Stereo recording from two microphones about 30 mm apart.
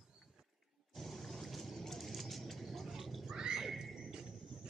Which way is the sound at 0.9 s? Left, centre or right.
Centre.